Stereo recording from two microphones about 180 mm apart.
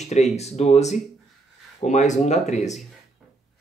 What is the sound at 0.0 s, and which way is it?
Speech, 40° left (ahead or behind).